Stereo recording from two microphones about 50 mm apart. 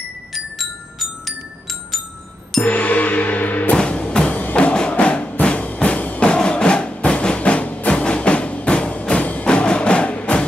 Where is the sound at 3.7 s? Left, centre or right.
Left.